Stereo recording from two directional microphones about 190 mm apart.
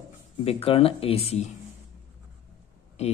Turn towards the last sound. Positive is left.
turn(degrees=35)  # may be behind; listen again after turning